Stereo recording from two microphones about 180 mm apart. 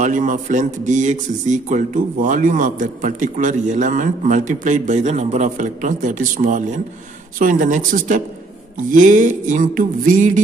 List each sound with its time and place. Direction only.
0.0 s speech: 45° right (ahead or behind)